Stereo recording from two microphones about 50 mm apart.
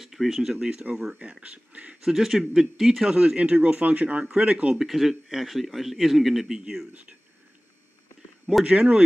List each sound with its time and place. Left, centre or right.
0.0 s speech: centre
1.2 s a man's voice: centre
2.0 s speech: centre
3.2 s a man's voice: right
4.3 s a man's voice: centre
4.7 s a man's voice: centre
8.6 s a man's voice: right